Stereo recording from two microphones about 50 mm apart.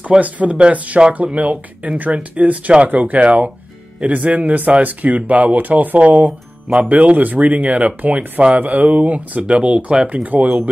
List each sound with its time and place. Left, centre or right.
0.2 s speech: right